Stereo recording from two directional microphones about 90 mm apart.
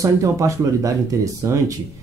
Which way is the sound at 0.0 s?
35° right (ahead or behind).